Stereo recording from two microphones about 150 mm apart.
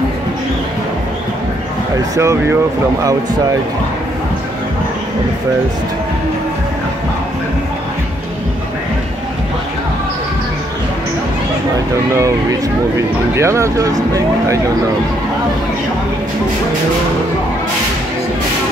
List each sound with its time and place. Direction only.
2.1 s speech: 20° right (ahead or behind)
12.1 s speech: 20° right (ahead or behind)